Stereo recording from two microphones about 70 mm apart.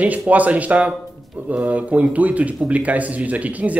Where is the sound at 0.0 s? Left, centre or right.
Right.